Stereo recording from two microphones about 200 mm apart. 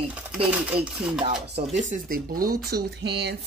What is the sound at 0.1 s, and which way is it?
Speech, 5° right (ahead or behind).